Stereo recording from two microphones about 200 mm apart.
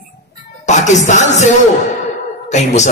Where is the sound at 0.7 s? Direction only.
35° left (ahead or behind).